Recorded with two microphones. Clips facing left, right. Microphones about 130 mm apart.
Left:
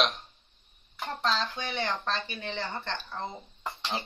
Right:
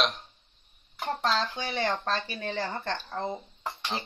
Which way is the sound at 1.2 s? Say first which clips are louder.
Even; 40° right (ahead or behind).